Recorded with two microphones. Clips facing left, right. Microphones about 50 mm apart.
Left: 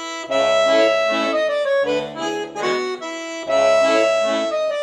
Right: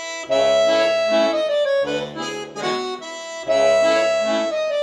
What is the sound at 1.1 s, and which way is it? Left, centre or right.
Accordion, centre.